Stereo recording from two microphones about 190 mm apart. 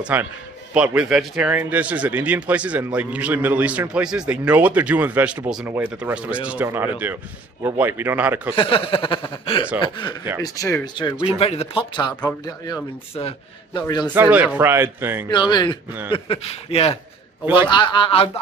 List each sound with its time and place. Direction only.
0.0 s speech: 10° right (ahead or behind)
8.5 s speech: 30° left (ahead or behind)
14.1 s speech: 10° right (ahead or behind)
15.2 s a man's voice: 20° left (ahead or behind)